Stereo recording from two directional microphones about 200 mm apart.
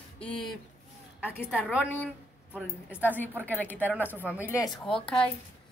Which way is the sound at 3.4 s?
10° left (ahead or behind).